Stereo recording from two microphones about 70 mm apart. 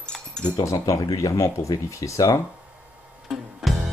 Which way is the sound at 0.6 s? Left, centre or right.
Left.